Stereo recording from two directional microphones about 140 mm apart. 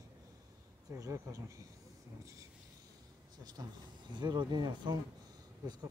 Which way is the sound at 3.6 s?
25° right (ahead or behind).